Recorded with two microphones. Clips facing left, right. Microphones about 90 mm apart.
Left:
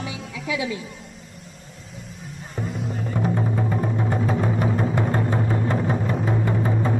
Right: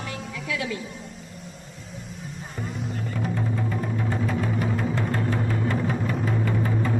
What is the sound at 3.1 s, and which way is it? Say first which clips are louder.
Music: left 5 dB; 30° left (ahead or behind).